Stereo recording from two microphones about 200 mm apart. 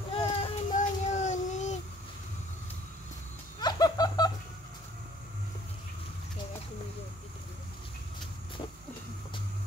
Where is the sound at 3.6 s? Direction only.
20° left (ahead or behind).